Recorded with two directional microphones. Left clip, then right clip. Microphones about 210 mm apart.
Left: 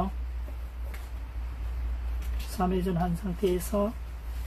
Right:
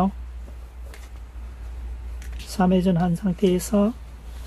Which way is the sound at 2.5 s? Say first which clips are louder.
Right 7 dB; 55° right (ahead or behind).